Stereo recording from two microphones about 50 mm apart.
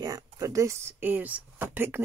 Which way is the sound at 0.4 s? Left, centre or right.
Right.